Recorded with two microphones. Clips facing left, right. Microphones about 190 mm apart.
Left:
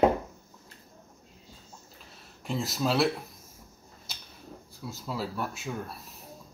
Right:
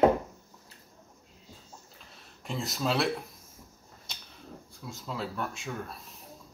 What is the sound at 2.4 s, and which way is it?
Speech, centre (ahead or behind).